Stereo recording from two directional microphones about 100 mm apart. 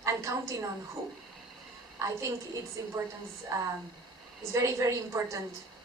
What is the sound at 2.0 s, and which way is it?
A woman's voice, 30° right (ahead or behind).